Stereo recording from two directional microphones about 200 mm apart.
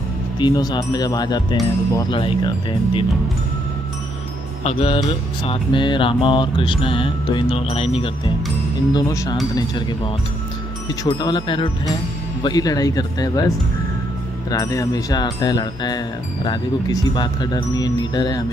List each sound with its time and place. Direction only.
0.4 s mantra: 20° left (ahead or behind)
4.6 s mantra: 30° left (ahead or behind)
8.9 s speech: 20° left (ahead or behind)
9.6 s mantra: 20° left (ahead or behind)
14.5 s mantra: 20° left (ahead or behind)